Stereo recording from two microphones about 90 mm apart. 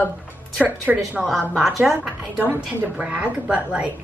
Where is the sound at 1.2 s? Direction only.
Centre (ahead or behind).